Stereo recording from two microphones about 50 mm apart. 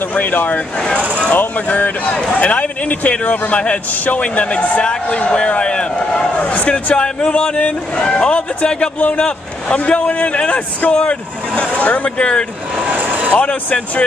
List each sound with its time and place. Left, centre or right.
0.1 s speech: left
0.7 s speech: centre
1.7 s speech: left
6.3 s speech: left
13.0 s vehicle: right
13.3 s speech: left